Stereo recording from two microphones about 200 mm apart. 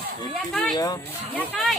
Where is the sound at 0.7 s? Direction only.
20° left (ahead or behind).